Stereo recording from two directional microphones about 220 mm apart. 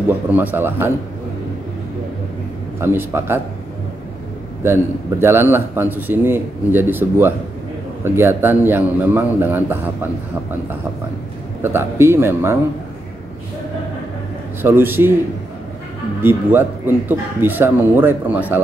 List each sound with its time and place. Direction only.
0.3 s speech: 10° right (ahead or behind)
2.8 s speech: 10° right (ahead or behind)
4.6 s speech: 10° right (ahead or behind)
11.6 s speech: 10° right (ahead or behind)
14.6 s speech: 10° right (ahead or behind)
16.2 s speech: 10° right (ahead or behind)